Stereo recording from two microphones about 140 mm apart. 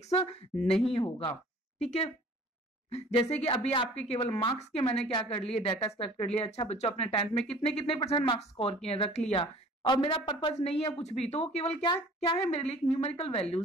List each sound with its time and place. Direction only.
0.0 s speech: 45° left (ahead or behind)
0.6 s speech: 5° left (ahead or behind)
0.8 s speech: 35° left (ahead or behind)
1.8 s speech: 50° left (ahead or behind)
4.2 s speech: 35° left (ahead or behind)
11.8 s speech: 35° left (ahead or behind)
12.4 s speech: 50° left (ahead or behind)